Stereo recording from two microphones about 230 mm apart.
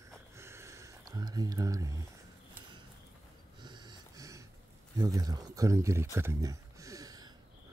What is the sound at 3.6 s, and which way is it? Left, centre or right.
Snort, centre.